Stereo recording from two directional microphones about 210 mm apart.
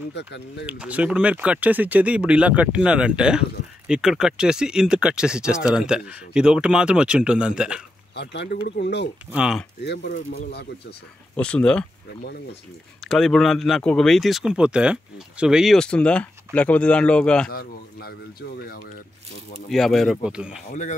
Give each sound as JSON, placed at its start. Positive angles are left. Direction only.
{"t": 0.2, "sound": "speech", "side_deg": 55}
{"t": 0.7, "sound": "speech", "side_deg": -5}
{"t": 8.1, "sound": "speech", "side_deg": 55}
{"t": 9.3, "sound": "speech", "side_deg": -5}
{"t": 9.8, "sound": "speech", "side_deg": 50}
{"t": 11.3, "sound": "speech", "side_deg": 5}
{"t": 13.0, "sound": "speech", "side_deg": 0}
{"t": 17.5, "sound": "a man's voice", "side_deg": 45}
{"t": 19.7, "sound": "speech", "side_deg": 0}